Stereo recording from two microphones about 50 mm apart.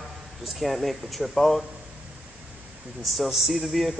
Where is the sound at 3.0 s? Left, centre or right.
Centre.